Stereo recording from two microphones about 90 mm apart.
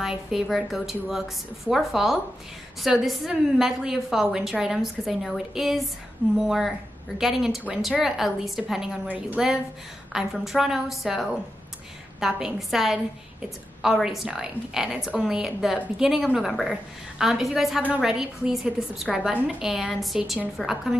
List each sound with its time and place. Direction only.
0.0 s a woman's voice: 5° right (ahead or behind)
9.0 s a woman's voice: 15° right (ahead or behind)
10.1 s a woman's voice: 5° right (ahead or behind)